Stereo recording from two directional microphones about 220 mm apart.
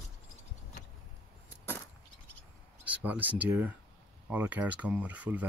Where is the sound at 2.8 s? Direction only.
5° right (ahead or behind).